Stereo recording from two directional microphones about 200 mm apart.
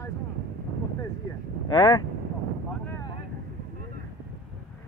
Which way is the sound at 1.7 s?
25° left (ahead or behind).